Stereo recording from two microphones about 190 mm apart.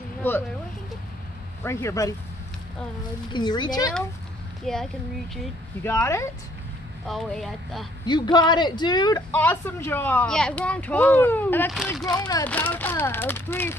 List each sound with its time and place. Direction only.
0.2 s speech: 10° left (ahead or behind)
1.6 s speech: 15° left (ahead or behind)
3.3 s speech: 25° left (ahead or behind)
4.7 s speech: centre (ahead or behind)
5.9 s speech: 15° left (ahead or behind)
7.1 s speech: centre (ahead or behind)
8.1 s speech: 25° left (ahead or behind)